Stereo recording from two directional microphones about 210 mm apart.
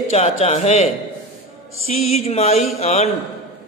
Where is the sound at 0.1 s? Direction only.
30° left (ahead or behind).